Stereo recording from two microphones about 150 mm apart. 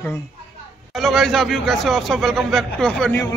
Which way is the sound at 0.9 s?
Centre (ahead or behind).